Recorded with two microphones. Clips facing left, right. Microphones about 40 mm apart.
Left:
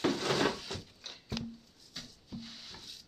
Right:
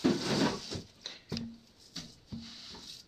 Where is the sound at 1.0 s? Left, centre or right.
Right.